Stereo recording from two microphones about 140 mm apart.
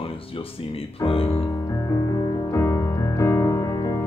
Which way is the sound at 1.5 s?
25° left (ahead or behind).